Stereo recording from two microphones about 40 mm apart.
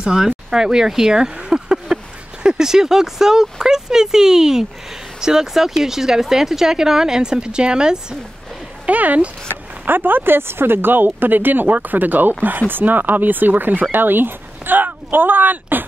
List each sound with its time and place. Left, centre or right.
0.0 s speech: centre
8.8 s a sound: right
9.5 s speech: right